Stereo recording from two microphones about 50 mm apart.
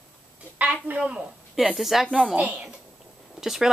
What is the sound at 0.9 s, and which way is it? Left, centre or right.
Speech, right.